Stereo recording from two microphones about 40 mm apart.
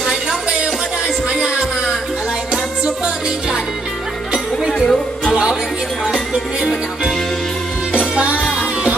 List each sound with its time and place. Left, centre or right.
0.0 s music: centre
1.3 s music: centre
4.7 s music: centre
5.3 s music: centre